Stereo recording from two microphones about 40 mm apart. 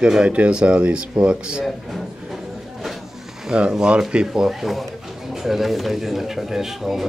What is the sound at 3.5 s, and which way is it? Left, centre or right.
Speech, centre.